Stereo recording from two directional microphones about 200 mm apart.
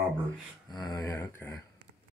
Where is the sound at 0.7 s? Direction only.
20° left (ahead or behind).